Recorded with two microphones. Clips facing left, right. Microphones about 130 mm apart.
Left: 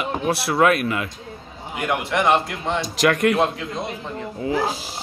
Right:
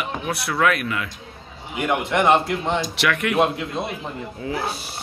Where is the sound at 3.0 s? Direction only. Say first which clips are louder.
Left 5 dB; 35° left (ahead or behind).